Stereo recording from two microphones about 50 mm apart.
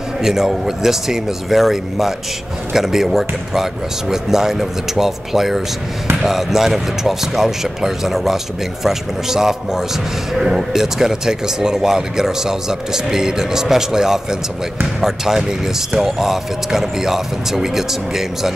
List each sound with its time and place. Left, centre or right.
0.2 s speech: centre